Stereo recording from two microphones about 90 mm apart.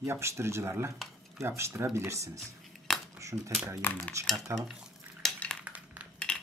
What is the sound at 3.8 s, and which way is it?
Cutlery, 20° left (ahead or behind).